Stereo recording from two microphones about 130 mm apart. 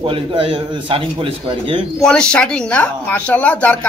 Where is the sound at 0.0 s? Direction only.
40° right (ahead or behind).